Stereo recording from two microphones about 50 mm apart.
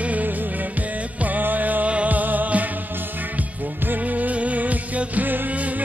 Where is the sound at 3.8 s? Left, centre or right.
Right.